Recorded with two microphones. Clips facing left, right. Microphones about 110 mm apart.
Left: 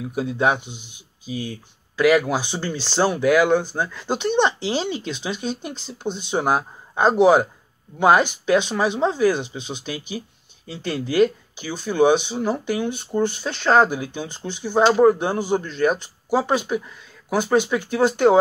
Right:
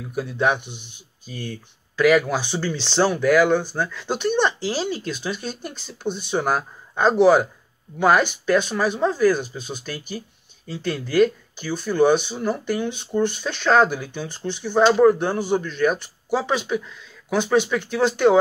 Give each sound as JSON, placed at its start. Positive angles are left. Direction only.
{"t": 0.0, "sound": "speech", "side_deg": 15}
{"t": 0.6, "sound": "speech", "side_deg": -60}
{"t": 2.0, "sound": "speech", "side_deg": 10}
{"t": 11.1, "sound": "speech", "side_deg": 15}